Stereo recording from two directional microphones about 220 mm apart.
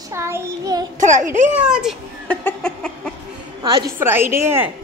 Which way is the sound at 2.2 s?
5° left (ahead or behind).